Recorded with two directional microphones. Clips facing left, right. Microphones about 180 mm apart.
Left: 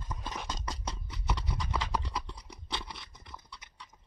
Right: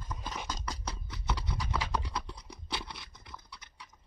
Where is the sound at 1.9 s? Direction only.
5° left (ahead or behind).